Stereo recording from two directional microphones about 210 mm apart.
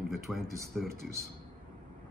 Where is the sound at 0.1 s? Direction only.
Centre (ahead or behind).